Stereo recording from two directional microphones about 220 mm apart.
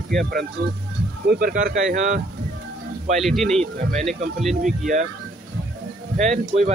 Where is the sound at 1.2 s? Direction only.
40° right (ahead or behind).